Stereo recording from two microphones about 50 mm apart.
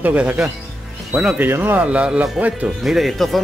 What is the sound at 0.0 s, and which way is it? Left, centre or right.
Speech, right.